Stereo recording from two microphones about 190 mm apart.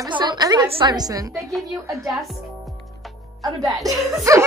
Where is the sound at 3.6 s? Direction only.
20° right (ahead or behind).